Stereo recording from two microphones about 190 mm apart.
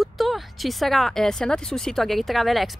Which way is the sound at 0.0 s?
Centre (ahead or behind).